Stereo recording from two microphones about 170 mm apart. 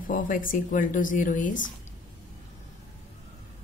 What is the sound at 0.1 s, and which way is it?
Speech, 55° left (ahead or behind).